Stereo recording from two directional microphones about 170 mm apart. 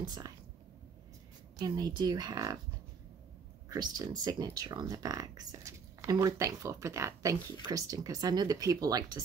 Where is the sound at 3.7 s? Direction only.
25° right (ahead or behind).